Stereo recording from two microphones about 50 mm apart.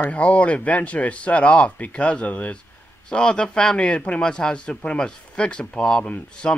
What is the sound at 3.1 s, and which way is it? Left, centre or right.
Speech, centre.